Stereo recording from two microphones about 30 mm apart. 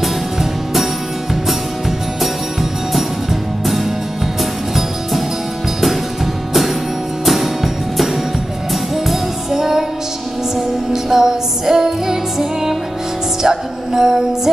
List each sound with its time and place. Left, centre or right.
0.0 s music: centre
7.2 s music: centre
10.9 s music: centre